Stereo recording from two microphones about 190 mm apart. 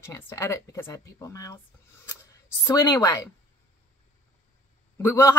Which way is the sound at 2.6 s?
15° left (ahead or behind).